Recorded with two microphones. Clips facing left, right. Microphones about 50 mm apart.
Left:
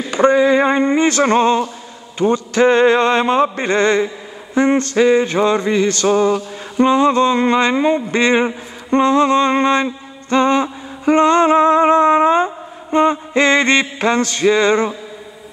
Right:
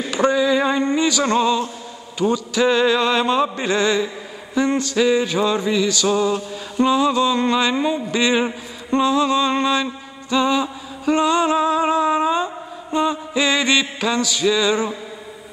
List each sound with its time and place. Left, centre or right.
0.1 s speech: left
1.2 s mantra: left